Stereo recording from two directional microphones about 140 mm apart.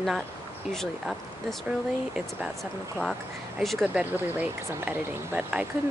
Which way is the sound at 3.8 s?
10° right (ahead or behind).